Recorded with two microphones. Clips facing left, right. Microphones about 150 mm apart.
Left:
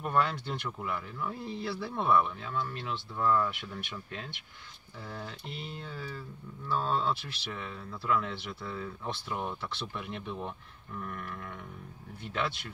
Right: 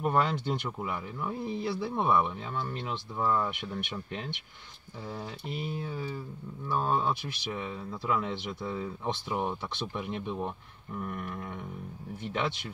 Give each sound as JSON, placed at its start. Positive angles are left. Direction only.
{"t": 0.0, "sound": "speech", "side_deg": -20}
{"t": 5.1, "sound": "speech", "side_deg": -15}